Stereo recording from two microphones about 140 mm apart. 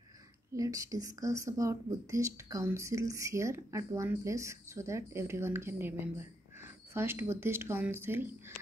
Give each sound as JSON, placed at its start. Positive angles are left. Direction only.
{"t": 0.6, "sound": "a woman's voice", "side_deg": -25}